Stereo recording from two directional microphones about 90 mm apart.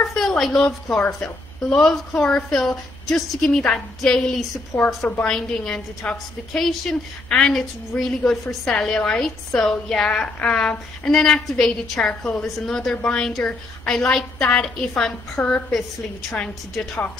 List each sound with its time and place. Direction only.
0.1 s a sound: 5° left (ahead or behind)
0.8 s a woman's voice: 10° left (ahead or behind)
4.7 s a woman's voice: 20° left (ahead or behind)